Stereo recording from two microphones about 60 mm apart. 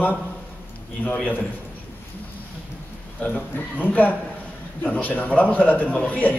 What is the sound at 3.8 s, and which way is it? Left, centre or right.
A man's voice, left.